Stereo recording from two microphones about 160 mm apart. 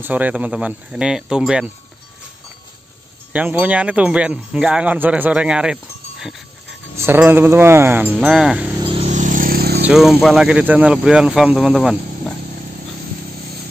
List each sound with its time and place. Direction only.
0.0 s speech: 10° right (ahead or behind)
3.3 s speech: 10° right (ahead or behind)
9.1 s a sound: 55° right (ahead or behind); by 9.8 s 75° right (ahead or behind)
9.8 s speech: centre (ahead or behind)